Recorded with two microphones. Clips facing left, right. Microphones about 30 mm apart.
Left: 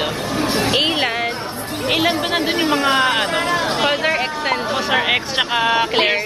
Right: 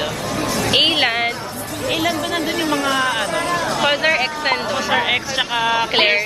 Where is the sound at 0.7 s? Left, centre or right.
Right.